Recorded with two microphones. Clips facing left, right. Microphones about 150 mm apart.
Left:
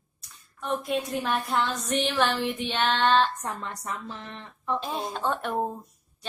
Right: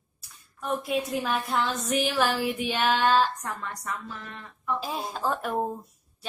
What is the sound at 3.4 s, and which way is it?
A woman's voice, 25° left (ahead or behind).